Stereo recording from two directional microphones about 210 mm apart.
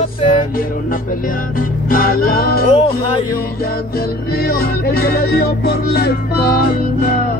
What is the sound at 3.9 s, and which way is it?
Music, 45° left (ahead or behind).